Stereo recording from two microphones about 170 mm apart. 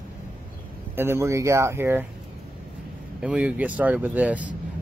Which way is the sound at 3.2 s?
5° right (ahead or behind).